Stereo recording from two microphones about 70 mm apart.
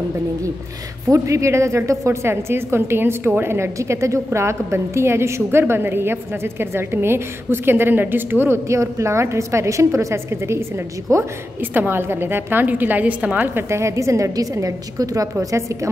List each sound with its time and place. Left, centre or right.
1.0 s a woman's voice: right
8.6 s a woman's voice: right
11.7 s a woman's voice: right
13.7 s a woman's voice: right